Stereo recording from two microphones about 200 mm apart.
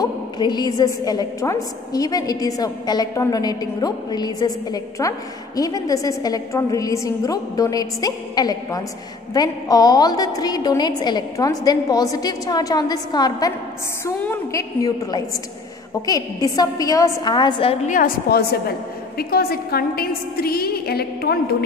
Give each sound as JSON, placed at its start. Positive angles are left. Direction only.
{"t": 0.0, "sound": "a woman's voice", "side_deg": 20}
{"t": 17.9, "sound": "a woman's voice", "side_deg": 50}